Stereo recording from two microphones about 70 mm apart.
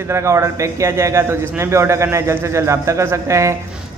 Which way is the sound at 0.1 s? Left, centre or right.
Right.